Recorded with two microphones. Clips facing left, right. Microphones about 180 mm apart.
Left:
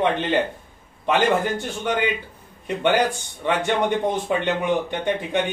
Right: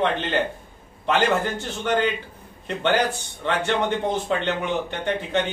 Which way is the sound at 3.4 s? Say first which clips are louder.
Left 2 dB; 15° left (ahead or behind).